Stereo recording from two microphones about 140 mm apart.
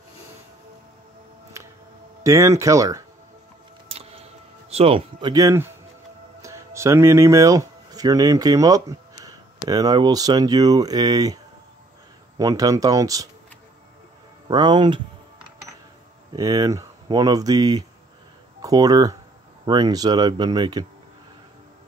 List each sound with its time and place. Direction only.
2.2 s speech: 20° right (ahead or behind)
3.9 s music: 45° right (ahead or behind)
5.2 s speech: 25° right (ahead or behind)
12.4 s speech: 25° right (ahead or behind)
14.5 s speech: 30° right (ahead or behind)
16.3 s speech: 25° right (ahead or behind)